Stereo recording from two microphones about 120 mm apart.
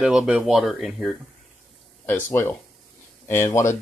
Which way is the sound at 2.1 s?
15° left (ahead or behind).